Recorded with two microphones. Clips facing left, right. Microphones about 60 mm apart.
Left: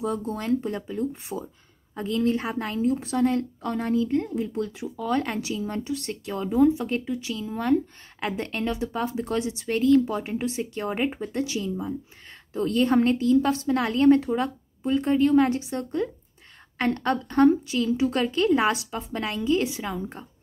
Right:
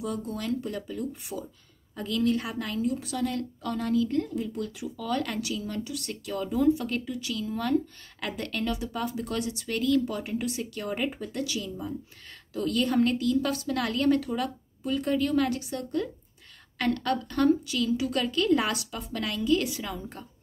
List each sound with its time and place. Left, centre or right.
0.0 s a woman's voice: left